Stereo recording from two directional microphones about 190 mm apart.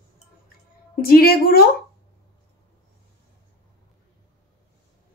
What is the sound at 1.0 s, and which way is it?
Speech, 50° left (ahead or behind).